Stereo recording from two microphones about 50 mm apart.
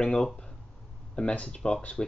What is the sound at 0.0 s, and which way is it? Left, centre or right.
Speech, centre.